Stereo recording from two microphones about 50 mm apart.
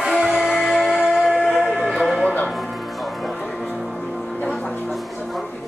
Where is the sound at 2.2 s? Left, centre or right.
Left.